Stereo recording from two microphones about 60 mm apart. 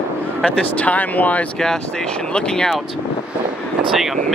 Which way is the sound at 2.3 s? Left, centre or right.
Centre.